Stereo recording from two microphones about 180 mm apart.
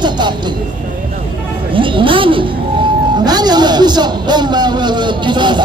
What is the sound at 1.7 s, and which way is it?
Speech, 30° right (ahead or behind).